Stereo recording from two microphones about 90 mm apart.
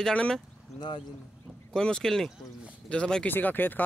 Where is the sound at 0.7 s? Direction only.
60° left (ahead or behind).